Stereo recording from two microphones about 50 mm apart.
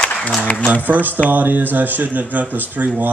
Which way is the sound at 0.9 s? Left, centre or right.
Right.